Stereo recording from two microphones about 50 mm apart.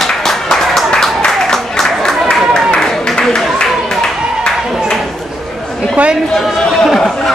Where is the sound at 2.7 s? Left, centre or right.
Centre.